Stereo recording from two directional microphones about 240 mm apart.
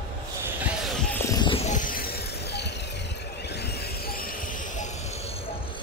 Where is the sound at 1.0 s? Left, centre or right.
Centre; by 2.7 s left.